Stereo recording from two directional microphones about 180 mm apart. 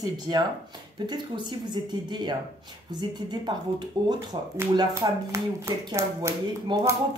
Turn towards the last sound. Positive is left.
turn(degrees=-15)  # may be behind; listen again after turning